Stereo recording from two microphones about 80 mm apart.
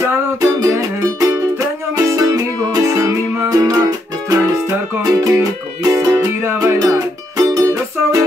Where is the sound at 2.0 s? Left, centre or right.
Right.